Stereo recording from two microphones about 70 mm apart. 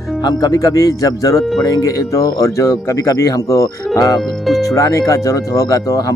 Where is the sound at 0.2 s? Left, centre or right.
Left.